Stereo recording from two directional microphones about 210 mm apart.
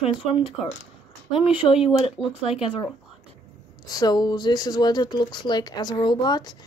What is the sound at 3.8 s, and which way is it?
Speech, 20° left (ahead or behind).